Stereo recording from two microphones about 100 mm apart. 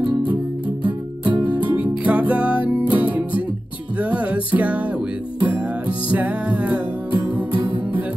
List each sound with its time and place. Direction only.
0.8 s music: 55° right (ahead or behind)
1.5 s music: 15° right (ahead or behind)